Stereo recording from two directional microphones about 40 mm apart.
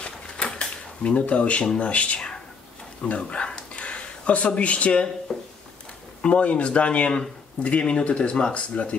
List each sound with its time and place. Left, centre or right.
0.0 s a sound: left
1.8 s speech: left
3.1 s a sound: left
4.5 s speech: left
5.3 s speech: centre
6.2 s speech: left